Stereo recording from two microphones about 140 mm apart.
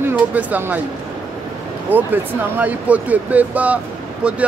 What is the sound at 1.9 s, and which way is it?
A man's voice, 10° right (ahead or behind).